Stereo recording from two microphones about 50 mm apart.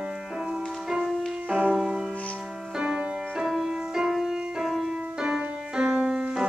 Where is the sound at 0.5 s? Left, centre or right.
Centre.